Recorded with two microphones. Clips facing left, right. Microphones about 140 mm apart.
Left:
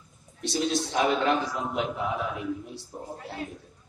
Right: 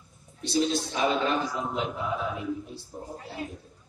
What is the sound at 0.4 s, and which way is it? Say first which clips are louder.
Speech: right 1 dB; 70° left (ahead or behind).